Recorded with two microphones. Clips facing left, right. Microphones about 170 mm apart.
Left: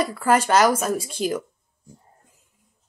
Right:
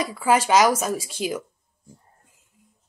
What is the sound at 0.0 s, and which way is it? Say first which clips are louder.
Speech: left 1 dB; 10° right (ahead or behind).